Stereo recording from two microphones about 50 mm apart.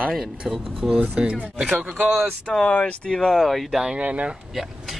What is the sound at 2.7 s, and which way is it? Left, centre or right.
Speech, left.